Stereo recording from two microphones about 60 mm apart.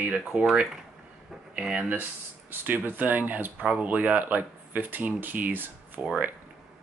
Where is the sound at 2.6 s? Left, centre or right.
Right.